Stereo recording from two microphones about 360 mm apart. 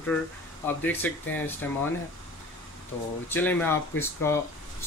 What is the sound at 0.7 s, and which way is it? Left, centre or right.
Speech, centre.